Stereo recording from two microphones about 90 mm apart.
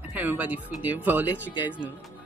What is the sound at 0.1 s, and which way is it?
Speech, 20° right (ahead or behind).